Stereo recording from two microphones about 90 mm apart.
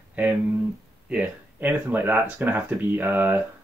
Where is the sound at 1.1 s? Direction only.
15° right (ahead or behind).